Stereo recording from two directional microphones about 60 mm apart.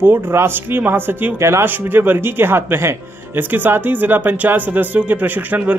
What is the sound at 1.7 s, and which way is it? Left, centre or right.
Speech, right.